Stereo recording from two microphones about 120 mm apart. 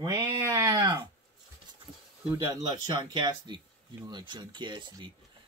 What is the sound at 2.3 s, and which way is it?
Speech, 30° right (ahead or behind).